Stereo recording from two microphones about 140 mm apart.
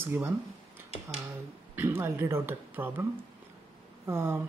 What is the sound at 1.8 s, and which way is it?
Speech, 15° right (ahead or behind).